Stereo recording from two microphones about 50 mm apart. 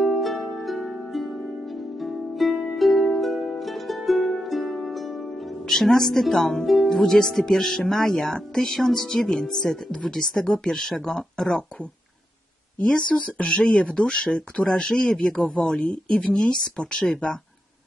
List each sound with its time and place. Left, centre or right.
0.0 s harp: centre
4.8 s music: centre
6.6 s speech: centre
12.7 s speech: left
15.4 s speech: left